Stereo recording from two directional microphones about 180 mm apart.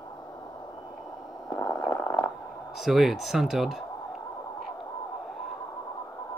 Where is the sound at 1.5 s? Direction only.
15° left (ahead or behind).